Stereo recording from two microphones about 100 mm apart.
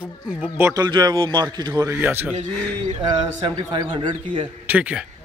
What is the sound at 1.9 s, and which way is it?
Speech, 20° right (ahead or behind).